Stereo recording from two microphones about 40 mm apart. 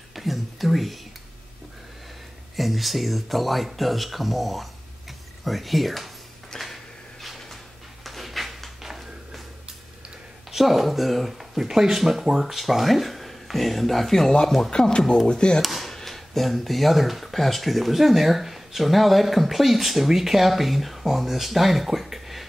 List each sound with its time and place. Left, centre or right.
0.1 s a sound: centre
2.5 s speech: centre
6.6 s a sound: centre
10.5 s speech: centre
14.7 s speech: centre
15.6 s speech: centre